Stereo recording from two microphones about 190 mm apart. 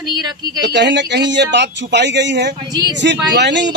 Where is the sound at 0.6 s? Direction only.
65° right (ahead or behind).